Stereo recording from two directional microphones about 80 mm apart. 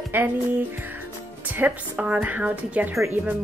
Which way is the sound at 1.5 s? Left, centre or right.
Centre.